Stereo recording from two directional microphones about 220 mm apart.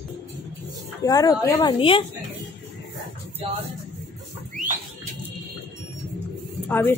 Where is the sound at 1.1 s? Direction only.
15° left (ahead or behind).